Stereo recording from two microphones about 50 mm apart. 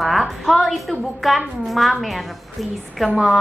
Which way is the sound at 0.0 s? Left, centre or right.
Centre.